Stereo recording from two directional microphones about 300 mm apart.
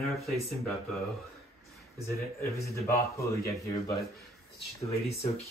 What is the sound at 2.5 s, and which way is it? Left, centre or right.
A man's voice, centre.